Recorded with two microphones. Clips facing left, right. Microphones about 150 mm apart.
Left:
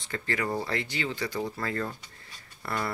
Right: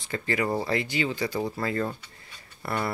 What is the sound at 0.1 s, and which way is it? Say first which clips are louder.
Speech: right 3 dB; 10° right (ahead or behind).